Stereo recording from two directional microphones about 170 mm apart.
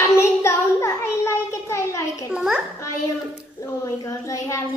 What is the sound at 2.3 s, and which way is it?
Speech, 5° right (ahead or behind).